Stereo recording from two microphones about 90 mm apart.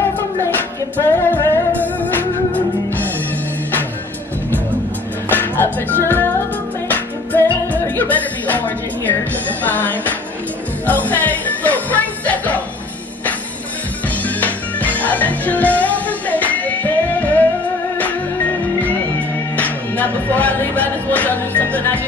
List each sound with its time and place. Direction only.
0.9 s music: 25° left (ahead or behind)
5.3 s music: 20° left (ahead or behind)
9.7 s speech: 20° left (ahead or behind)
10.9 s music: 20° left (ahead or behind)
14.2 s music: 20° left (ahead or behind)
18.8 s music: 15° left (ahead or behind)